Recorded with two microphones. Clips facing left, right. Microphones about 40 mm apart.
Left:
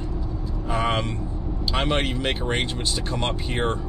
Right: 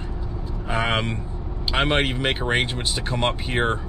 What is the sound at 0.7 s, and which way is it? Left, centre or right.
Speech, right.